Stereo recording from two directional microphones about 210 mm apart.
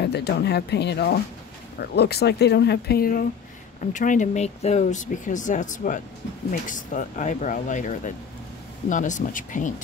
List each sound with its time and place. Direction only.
0.0 s speech: 50° left (ahead or behind)